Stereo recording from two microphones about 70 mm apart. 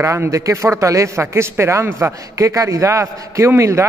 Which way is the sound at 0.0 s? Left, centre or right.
Right.